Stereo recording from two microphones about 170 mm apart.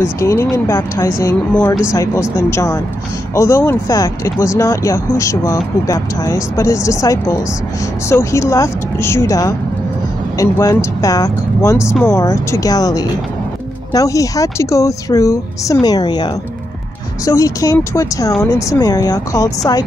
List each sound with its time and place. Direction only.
0.0 s speech: 15° left (ahead or behind)